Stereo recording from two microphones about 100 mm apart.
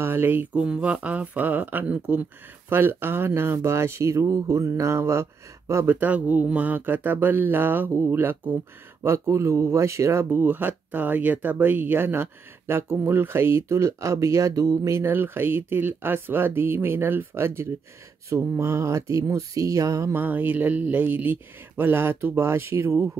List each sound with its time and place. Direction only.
0.0 s speech: 20° right (ahead or behind)
5.9 s speech: 15° right (ahead or behind); by 15.0 s 35° right (ahead or behind)
15.0 s speech: 20° right (ahead or behind)